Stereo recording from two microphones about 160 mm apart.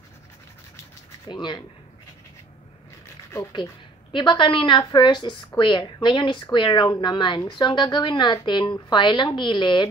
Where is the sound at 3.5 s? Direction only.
30° left (ahead or behind).